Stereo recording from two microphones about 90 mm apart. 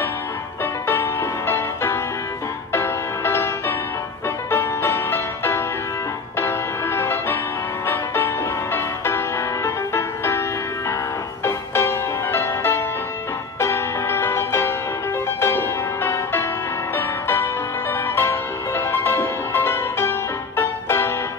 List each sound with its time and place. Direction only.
1.5 s music: 25° left (ahead or behind)
11.4 s music: 30° left (ahead or behind)